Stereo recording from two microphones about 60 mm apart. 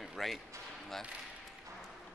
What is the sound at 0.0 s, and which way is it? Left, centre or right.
Basketball bounce, centre.